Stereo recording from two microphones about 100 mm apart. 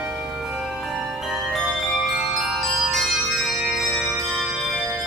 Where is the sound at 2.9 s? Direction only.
Centre (ahead or behind).